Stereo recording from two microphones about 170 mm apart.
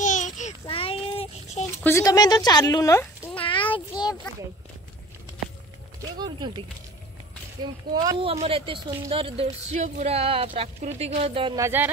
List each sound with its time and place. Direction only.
0.0 s child singing: 45° left (ahead or behind)
1.8 s speech: 15° left (ahead or behind)
3.3 s a sound: 30° left (ahead or behind)
6.1 s speech: 25° right (ahead or behind)
7.9 s speech: 25° right (ahead or behind)
11.5 s speech: 15° right (ahead or behind)